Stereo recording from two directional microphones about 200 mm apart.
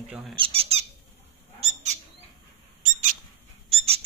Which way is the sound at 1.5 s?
30° right (ahead or behind).